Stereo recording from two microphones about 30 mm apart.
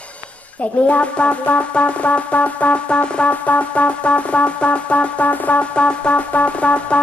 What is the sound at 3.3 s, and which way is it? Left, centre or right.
Music, left.